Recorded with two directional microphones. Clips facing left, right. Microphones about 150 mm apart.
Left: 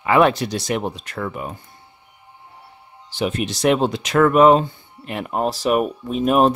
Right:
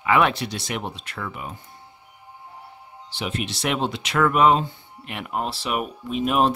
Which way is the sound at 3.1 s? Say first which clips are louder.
Left 6 dB; 45° left (ahead or behind).